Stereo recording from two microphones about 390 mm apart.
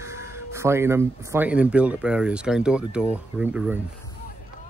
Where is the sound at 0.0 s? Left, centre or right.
Centre.